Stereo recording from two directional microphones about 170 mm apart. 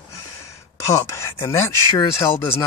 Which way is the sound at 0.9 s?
15° left (ahead or behind).